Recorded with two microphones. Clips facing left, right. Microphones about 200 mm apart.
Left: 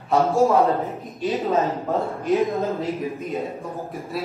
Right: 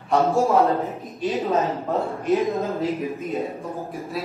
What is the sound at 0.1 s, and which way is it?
Speech, centre (ahead or behind).